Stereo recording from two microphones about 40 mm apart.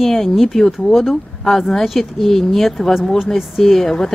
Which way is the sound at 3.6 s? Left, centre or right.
Centre.